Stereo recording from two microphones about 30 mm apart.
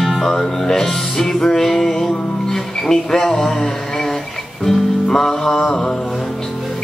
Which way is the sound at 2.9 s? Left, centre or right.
Left.